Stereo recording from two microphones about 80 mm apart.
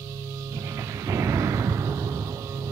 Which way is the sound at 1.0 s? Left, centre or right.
Right.